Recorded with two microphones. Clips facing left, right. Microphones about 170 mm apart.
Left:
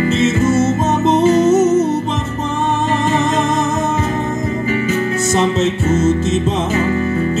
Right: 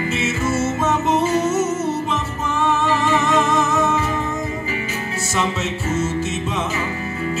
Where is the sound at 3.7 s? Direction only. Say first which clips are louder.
Left 1 dB; 40° left (ahead or behind).